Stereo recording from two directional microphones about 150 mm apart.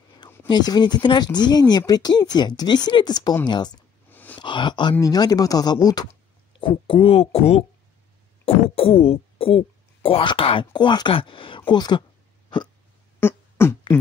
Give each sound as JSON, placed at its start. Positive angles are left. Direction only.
{"t": 0.5, "sound": "speech", "side_deg": 30}
{"t": 4.1, "sound": "a sound", "side_deg": 10}
{"t": 4.4, "sound": "speech", "side_deg": 30}
{"t": 6.6, "sound": "speech", "side_deg": 35}
{"t": 13.2, "sound": "beatboxing", "side_deg": 15}